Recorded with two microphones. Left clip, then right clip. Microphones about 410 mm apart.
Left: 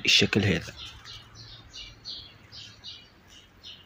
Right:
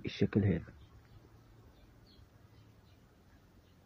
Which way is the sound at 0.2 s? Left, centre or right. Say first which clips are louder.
Left 10 dB; right.